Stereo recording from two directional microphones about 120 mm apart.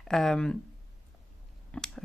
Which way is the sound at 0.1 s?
5° left (ahead or behind).